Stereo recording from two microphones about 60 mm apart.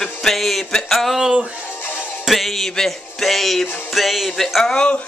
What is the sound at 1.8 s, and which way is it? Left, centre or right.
Music, left.